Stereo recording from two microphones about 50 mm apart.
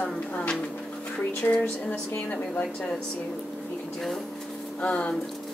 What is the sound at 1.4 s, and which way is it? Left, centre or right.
A woman's voice, left.